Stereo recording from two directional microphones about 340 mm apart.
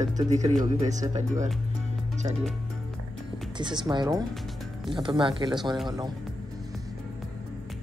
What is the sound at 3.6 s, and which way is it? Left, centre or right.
Speech, centre.